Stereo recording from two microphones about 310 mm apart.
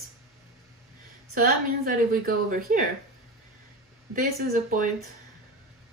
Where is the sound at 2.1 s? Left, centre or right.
Right.